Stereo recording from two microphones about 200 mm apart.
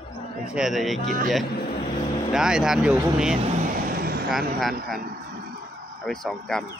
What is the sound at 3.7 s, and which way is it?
Vehicle, 45° right (ahead or behind).